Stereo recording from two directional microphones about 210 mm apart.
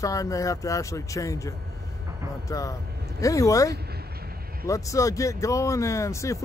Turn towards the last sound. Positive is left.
turn(degrees=15)  # may be behind; listen again after turning